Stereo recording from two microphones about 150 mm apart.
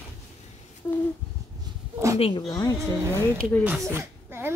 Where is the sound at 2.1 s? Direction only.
40° left (ahead or behind).